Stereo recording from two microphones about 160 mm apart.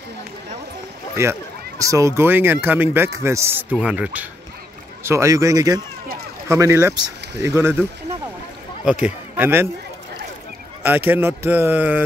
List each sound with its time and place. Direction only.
1.2 s speech: 15° right (ahead or behind)
9.0 s a man's voice: 10° right (ahead or behind)
10.8 s speech: 10° right (ahead or behind)